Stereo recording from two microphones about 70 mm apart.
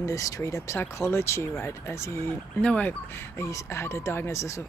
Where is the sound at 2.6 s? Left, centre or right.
Centre.